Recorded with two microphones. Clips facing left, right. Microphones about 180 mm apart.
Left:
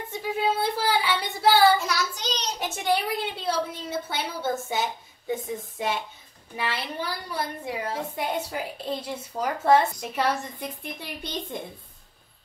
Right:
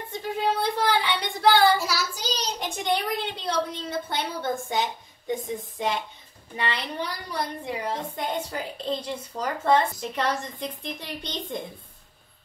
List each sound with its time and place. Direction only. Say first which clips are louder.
0.1 s child singing: even; 5° left (ahead or behind)
1.8 s child singing: even; 5° right (ahead or behind)
2.6 s a woman's voice: left 2 dB; 5° left (ahead or behind)